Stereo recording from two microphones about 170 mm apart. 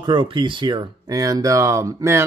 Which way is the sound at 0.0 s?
25° right (ahead or behind).